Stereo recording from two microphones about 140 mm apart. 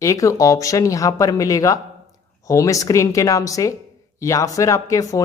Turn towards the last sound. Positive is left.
turn(degrees=25)  # may be behind; listen again after turning